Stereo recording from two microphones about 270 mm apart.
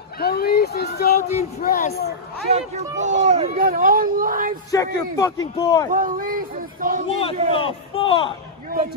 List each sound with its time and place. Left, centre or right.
0.2 s a sound: left
1.6 s speech: left
2.5 s speech: right
4.6 s a man's voice: centre
5.9 s speech: right
7.1 s a man's voice: left